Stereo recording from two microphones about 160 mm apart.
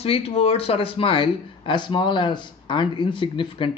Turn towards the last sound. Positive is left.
turn(degrees=30)  # may be behind; listen again after turning